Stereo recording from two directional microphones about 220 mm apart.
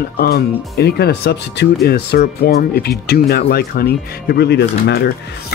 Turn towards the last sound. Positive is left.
turn(degrees=50)  # may be behind; listen again after turning